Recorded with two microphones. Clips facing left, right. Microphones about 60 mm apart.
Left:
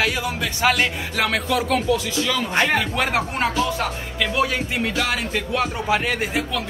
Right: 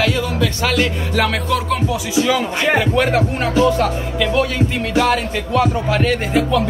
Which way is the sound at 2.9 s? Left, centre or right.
Centre.